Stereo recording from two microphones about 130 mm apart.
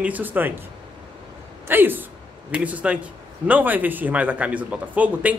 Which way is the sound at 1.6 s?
15° right (ahead or behind).